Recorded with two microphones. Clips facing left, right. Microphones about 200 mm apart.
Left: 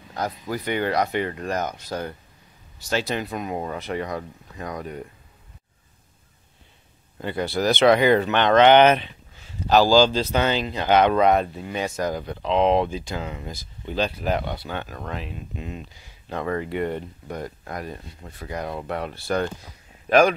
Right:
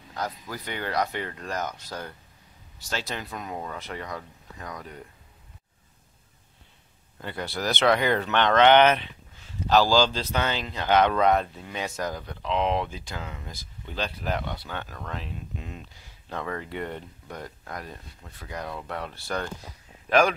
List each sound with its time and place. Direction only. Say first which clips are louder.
0.7 s speech: left 9 dB; 15° left (ahead or behind)
1.4 s speech: left 5 dB; 55° left (ahead or behind)
1.9 s speech: left 7 dB; 20° left (ahead or behind)
7.2 s speech: left 7 dB; 15° left (ahead or behind)
12.1 s speech: left 6 dB; 20° left (ahead or behind)
14.4 s speech: left 4 dB; 30° left (ahead or behind)
14.7 s speech: left 4 dB; 15° left (ahead or behind)